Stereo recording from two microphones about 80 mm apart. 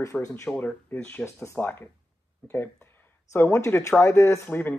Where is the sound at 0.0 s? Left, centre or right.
Left.